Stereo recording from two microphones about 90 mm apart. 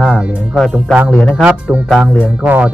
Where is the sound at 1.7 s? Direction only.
20° right (ahead or behind).